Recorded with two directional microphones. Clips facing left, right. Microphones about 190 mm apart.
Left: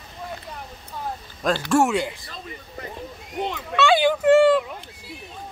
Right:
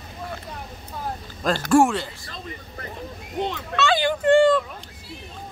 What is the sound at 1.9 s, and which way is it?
Speech, 15° left (ahead or behind).